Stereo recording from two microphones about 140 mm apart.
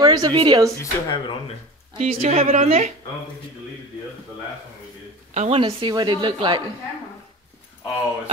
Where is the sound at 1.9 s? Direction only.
50° right (ahead or behind).